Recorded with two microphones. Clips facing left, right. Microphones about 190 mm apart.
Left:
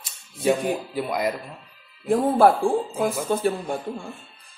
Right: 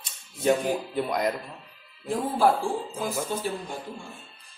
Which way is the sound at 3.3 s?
55° left (ahead or behind).